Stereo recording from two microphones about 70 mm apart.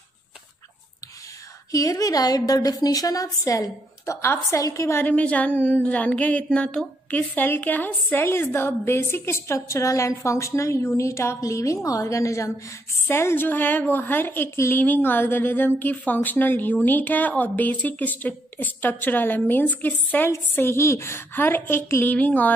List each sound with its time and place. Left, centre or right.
1.7 s a woman's voice: left
5.0 s a woman's voice: left
13.0 s a woman's voice: left
20.5 s a woman's voice: left
22.1 s a woman's voice: left